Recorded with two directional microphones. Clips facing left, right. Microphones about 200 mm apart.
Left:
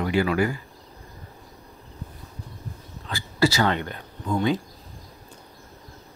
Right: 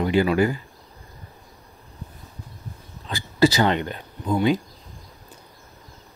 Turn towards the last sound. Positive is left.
turn(degrees=-20)  # may be behind; listen again after turning